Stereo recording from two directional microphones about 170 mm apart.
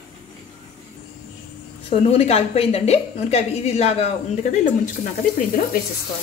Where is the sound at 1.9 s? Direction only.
35° left (ahead or behind).